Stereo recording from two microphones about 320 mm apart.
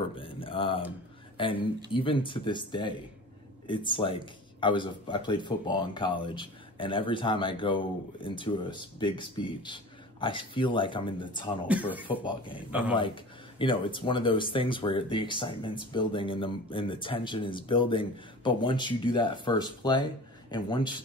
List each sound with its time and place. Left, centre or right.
0.2 s a sound: centre
1.9 s speech: centre
11.6 s speech: centre
12.2 s speech: centre